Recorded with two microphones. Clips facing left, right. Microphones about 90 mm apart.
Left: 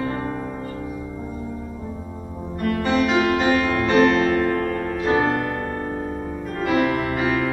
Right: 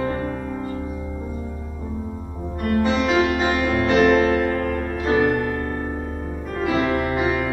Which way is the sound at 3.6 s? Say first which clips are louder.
Even; 15° right (ahead or behind).